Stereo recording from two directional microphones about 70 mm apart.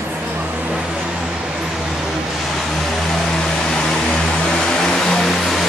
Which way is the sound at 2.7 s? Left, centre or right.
Centre.